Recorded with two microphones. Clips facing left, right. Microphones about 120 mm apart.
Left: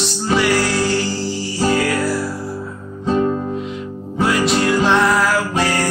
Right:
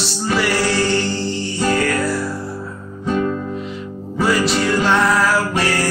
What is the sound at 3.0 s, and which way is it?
Music, 30° left (ahead or behind).